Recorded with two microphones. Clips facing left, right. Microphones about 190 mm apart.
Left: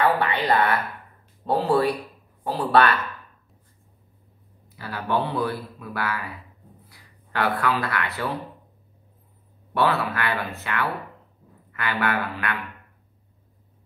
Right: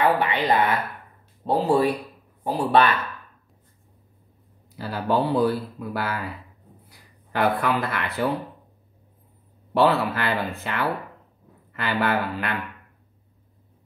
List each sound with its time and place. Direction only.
0.2 s speech: 20° right (ahead or behind)
4.7 s speech: 30° right (ahead or behind)
7.3 s speech: 25° right (ahead or behind)
9.8 s speech: 30° right (ahead or behind)